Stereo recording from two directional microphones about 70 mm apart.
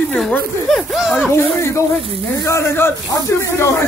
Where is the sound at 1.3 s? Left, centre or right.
Left.